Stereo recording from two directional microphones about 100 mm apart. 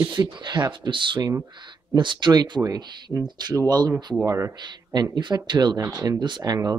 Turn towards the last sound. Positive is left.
turn(degrees=-40)  # may be behind; listen again after turning